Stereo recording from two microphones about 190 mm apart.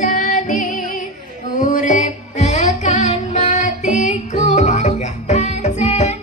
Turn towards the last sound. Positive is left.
turn(degrees=35)  # may be behind; listen again after turning